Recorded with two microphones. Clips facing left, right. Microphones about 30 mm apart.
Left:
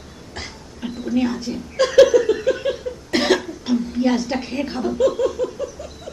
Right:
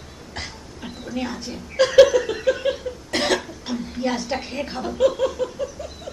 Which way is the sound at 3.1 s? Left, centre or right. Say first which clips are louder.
Left 4 dB; centre.